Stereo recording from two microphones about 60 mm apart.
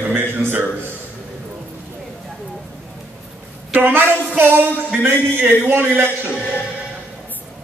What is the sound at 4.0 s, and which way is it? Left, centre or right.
Music, right.